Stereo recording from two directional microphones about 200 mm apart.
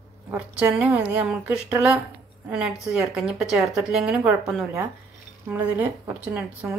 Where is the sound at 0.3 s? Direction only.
10° right (ahead or behind).